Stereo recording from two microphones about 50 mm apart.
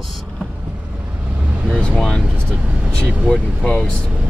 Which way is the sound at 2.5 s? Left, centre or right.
Left.